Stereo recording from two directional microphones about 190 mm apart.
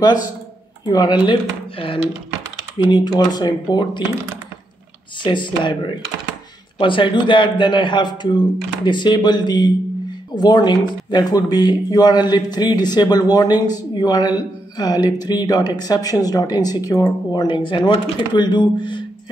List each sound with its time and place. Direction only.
0.8 s speech: 20° left (ahead or behind)
5.2 s speech: 25° left (ahead or behind)
6.8 s speech: 25° left (ahead or behind)